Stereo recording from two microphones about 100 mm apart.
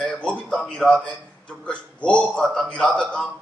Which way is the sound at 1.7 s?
10° left (ahead or behind).